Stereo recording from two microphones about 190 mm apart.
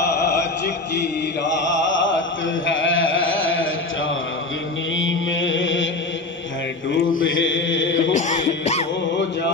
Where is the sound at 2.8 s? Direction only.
90° left.